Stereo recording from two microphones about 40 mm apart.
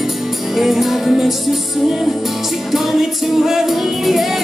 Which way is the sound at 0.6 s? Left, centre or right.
Centre.